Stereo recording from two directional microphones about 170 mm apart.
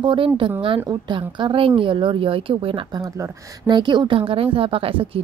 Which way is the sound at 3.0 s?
20° right (ahead or behind).